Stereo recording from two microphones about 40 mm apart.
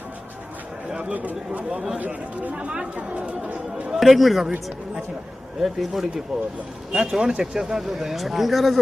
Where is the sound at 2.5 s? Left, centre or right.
Right.